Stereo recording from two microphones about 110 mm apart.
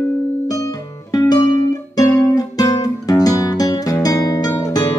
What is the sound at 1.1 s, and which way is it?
Music, 35° left (ahead or behind).